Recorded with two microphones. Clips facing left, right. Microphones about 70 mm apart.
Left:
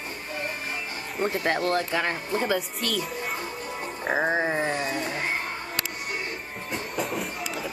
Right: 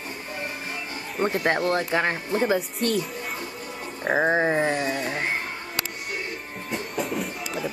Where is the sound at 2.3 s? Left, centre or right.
Centre.